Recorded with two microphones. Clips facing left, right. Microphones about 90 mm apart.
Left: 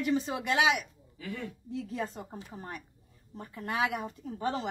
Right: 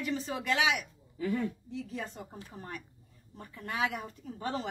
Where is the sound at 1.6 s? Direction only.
40° left (ahead or behind).